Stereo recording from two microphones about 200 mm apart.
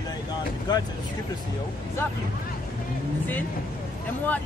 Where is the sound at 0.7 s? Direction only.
20° left (ahead or behind).